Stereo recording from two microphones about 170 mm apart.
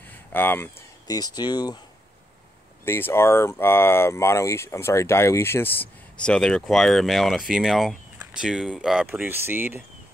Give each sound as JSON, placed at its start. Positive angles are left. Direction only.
{"t": 0.0, "sound": "speech", "side_deg": 10}
{"t": 2.8, "sound": "speech", "side_deg": 15}